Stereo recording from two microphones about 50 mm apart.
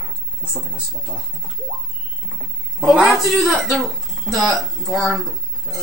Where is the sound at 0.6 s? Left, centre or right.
Right.